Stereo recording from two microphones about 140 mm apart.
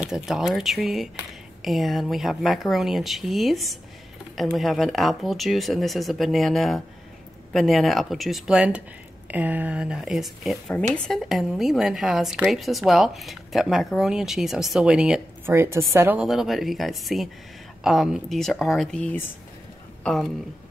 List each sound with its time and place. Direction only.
0.0 s speech: 5° right (ahead or behind)
15.4 s a woman's voice: 20° right (ahead or behind)
16.2 s speech: centre (ahead or behind)